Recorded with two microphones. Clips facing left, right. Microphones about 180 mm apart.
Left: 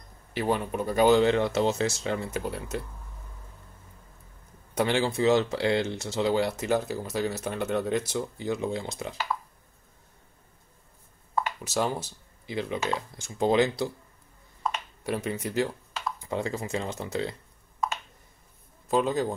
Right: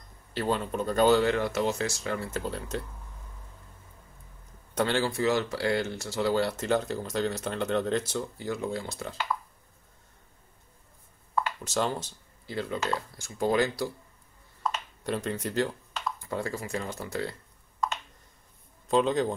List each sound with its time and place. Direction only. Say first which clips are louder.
0.3 s speech: left 1 dB; 15° left (ahead or behind)
4.7 s speech: left 2 dB; 15° left (ahead or behind)
11.4 s speech: left 2 dB; 10° left (ahead or behind)
14.6 s computer keyboard: left 1 dB; centre (ahead or behind)
15.1 s speech: left 1 dB; 10° left (ahead or behind)
16.2 s speech: left 4 dB; 20° left (ahead or behind)
18.9 s a man's voice: right 1 dB; 5° left (ahead or behind)